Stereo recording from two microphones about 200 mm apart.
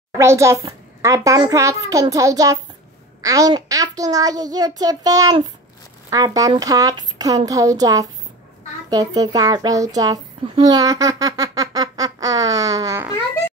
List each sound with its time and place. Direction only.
0.2 s a child's voice: 15° right (ahead or behind)